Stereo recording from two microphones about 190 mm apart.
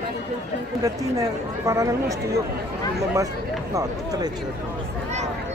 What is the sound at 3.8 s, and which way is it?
Speech, 20° right (ahead or behind).